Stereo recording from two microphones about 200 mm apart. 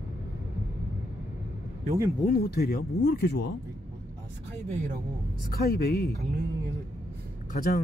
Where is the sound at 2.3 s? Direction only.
50° left (ahead or behind).